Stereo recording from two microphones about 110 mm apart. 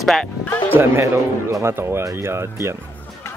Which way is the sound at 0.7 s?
20° right (ahead or behind).